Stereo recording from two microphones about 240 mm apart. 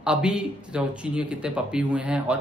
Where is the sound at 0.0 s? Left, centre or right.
Centre.